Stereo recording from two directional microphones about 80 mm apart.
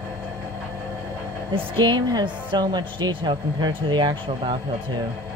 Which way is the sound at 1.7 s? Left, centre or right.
Right.